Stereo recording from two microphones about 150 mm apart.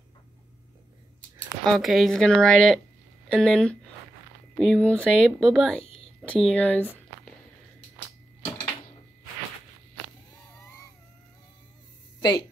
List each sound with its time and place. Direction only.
1.6 s speech: centre (ahead or behind)
12.2 s speech: 30° left (ahead or behind)